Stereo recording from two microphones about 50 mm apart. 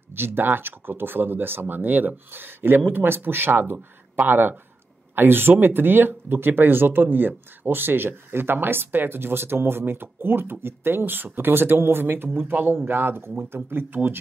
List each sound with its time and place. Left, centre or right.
0.1 s speech: right